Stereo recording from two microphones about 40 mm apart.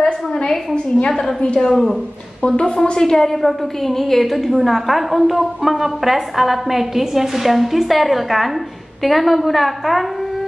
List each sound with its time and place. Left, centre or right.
0.9 s a woman's voice: left
1.7 s a woman's voice: centre
2.4 s a woman's voice: left; by 10.0 s centre